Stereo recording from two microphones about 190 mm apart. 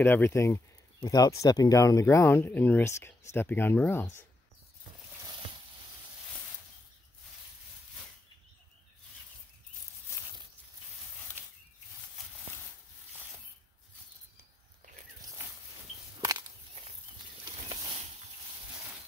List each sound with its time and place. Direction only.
0.0 s speech: 10° left (ahead or behind)
16.2 s whip: 20° right (ahead or behind)